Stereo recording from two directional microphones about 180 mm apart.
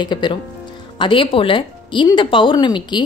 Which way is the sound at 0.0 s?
25° left (ahead or behind).